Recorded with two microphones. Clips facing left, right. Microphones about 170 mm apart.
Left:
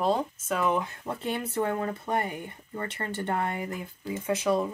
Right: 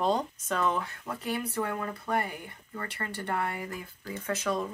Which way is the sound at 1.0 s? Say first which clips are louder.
Left 2 dB; 25° left (ahead or behind).